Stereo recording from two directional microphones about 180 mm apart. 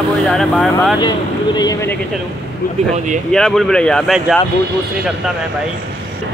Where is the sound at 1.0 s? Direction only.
20° left (ahead or behind).